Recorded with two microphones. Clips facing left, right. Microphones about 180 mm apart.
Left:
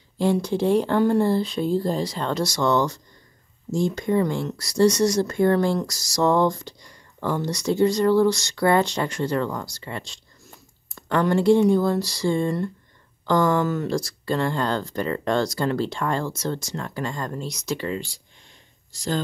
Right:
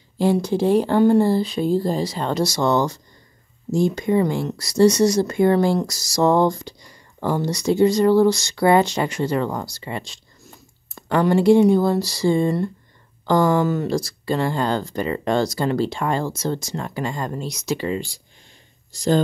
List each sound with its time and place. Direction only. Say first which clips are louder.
0.2 s speech: right 3 dB; 5° right (ahead or behind)